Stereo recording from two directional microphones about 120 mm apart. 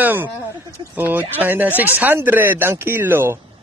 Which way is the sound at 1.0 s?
15° right (ahead or behind).